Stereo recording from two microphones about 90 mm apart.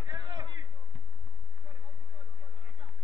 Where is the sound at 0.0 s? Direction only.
60° right (ahead or behind).